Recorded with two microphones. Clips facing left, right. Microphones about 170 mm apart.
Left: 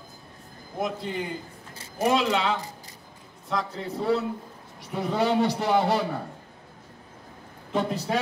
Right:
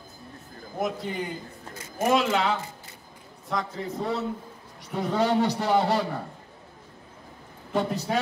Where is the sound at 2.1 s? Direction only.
Centre (ahead or behind).